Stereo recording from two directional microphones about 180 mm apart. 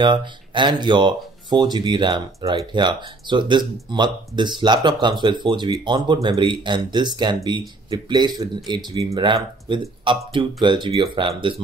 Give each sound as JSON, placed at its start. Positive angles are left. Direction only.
{"t": 0.0, "sound": "speech", "side_deg": -25}